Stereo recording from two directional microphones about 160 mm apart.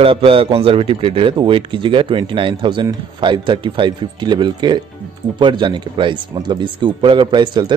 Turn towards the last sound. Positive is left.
turn(degrees=-30)  # may be behind; listen again after turning